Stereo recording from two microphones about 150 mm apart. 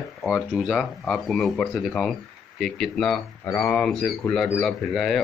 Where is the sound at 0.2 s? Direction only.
Centre (ahead or behind).